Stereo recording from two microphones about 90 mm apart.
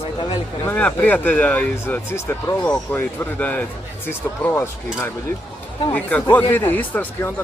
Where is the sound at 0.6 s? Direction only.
15° left (ahead or behind).